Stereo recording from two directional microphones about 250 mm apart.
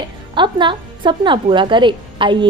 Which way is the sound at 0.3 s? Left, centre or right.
Centre.